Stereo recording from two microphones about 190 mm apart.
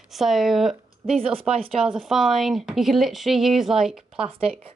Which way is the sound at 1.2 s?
30° right (ahead or behind).